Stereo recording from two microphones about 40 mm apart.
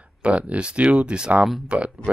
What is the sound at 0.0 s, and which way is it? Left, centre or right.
Speech, right.